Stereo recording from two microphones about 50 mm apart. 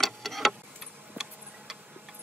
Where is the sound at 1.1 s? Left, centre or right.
Centre.